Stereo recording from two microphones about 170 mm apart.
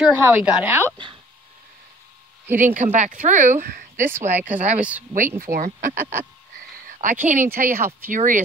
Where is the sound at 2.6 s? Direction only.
45° right (ahead or behind).